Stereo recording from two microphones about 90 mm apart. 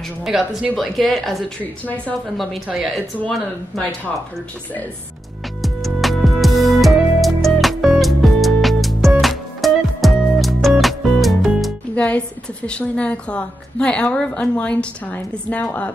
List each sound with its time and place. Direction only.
0.2 s a woman's voice: 5° right (ahead or behind)
1.6 s a woman's voice: 20° left (ahead or behind)
2.3 s a woman's voice: centre (ahead or behind)
5.6 s music: centre (ahead or behind)
11.9 s music: 15° left (ahead or behind)
12.6 s a woman's voice: 10° left (ahead or behind)